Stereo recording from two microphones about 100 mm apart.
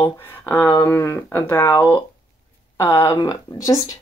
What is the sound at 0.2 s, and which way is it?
Speech, 20° left (ahead or behind).